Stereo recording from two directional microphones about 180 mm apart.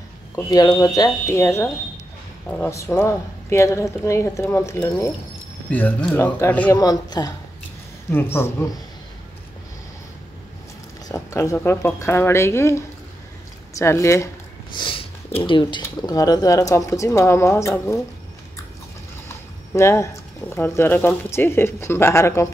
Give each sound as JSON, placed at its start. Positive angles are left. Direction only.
{"t": 0.4, "sound": "speech", "side_deg": 20}
{"t": 6.8, "sound": "speech", "side_deg": 20}
{"t": 11.1, "sound": "speech", "side_deg": 15}
{"t": 19.7, "sound": "speech", "side_deg": 15}